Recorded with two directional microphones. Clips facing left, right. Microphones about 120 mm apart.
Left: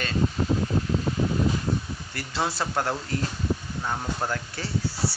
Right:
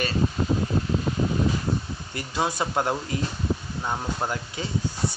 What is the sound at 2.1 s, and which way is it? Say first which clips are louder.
Speech: right 2 dB; 15° right (ahead or behind).